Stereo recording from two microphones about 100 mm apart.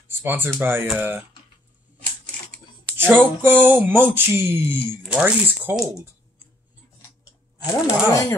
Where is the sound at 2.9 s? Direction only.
20° right (ahead or behind).